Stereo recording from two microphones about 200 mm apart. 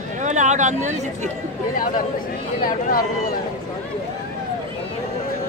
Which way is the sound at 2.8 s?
45° left (ahead or behind).